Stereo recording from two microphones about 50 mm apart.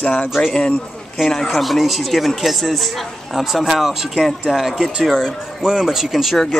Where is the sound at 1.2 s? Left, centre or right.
Centre.